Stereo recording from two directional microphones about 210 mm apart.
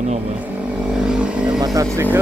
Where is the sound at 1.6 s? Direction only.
15° right (ahead or behind).